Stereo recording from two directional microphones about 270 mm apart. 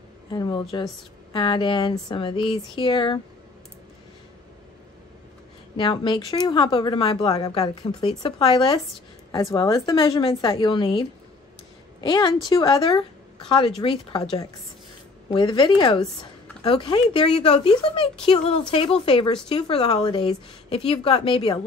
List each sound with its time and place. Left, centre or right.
0.3 s speech: centre
5.8 s speech: centre
15.2 s a woman's voice: centre